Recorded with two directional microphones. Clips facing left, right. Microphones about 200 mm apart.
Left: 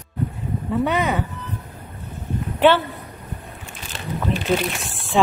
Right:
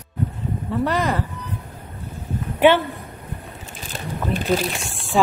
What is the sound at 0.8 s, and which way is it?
Speech, centre (ahead or behind).